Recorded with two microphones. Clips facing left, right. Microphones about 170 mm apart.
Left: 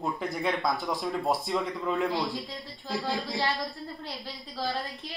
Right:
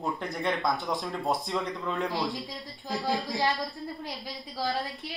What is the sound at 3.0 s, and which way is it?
Speech, 20° right (ahead or behind).